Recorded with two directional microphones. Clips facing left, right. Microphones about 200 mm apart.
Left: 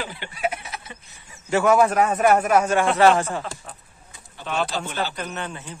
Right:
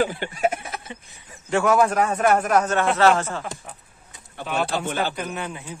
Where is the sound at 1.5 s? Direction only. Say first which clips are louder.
Left 1 dB; 5° left (ahead or behind).